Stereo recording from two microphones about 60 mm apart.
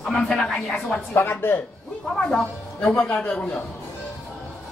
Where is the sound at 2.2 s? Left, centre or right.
Centre.